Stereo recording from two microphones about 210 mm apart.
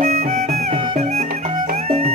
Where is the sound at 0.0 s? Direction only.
35° right (ahead or behind).